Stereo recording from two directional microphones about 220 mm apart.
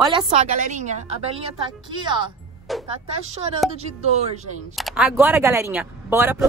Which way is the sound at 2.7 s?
Centre (ahead or behind).